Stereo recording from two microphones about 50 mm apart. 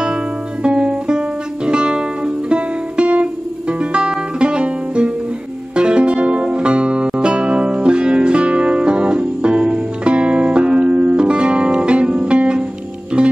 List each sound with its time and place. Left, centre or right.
0.7 s music: centre